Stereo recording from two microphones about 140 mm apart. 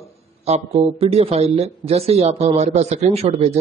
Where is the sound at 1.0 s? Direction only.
45° right (ahead or behind).